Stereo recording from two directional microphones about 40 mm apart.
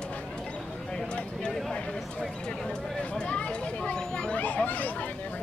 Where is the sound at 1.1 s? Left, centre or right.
Left.